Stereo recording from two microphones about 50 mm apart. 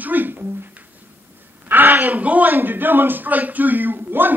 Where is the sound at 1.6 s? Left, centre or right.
Right.